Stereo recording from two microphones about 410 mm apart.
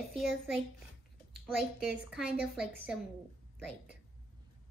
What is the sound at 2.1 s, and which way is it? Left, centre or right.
Speech, centre.